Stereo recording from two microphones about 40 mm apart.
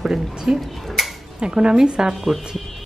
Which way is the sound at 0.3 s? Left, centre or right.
Centre.